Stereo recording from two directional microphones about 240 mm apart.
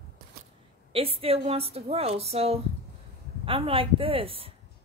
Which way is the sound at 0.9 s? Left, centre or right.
Right.